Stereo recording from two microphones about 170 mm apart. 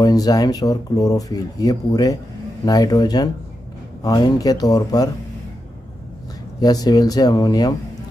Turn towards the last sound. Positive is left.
turn(degrees=25)  # may be behind; listen again after turning